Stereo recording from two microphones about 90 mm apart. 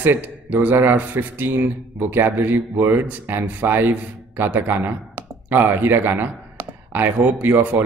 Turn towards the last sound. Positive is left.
turn(degrees=-20)  # may be behind; listen again after turning